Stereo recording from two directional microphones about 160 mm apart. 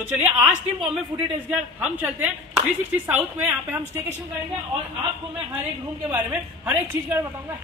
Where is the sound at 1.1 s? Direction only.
30° right (ahead or behind).